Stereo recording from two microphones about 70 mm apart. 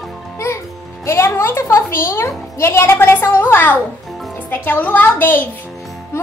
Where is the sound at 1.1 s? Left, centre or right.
Left.